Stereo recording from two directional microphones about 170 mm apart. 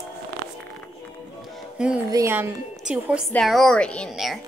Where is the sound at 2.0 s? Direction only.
15° right (ahead or behind).